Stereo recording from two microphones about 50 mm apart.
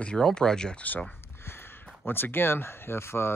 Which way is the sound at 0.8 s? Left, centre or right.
Left.